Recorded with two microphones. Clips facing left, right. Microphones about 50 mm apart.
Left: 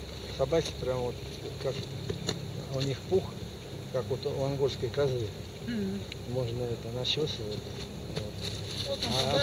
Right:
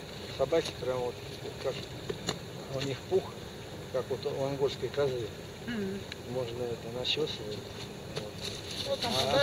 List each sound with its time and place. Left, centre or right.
0.4 s speech: centre
5.7 s speech: centre
6.3 s speech: centre
8.8 s speech: centre